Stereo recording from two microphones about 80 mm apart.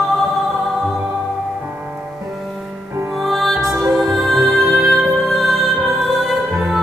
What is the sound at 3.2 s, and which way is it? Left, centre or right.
Music, centre.